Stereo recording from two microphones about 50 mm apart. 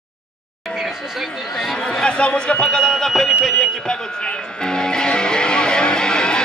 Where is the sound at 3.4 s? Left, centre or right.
Centre.